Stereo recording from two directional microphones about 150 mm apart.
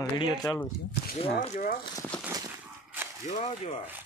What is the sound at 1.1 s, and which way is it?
Speech, 40° left (ahead or behind).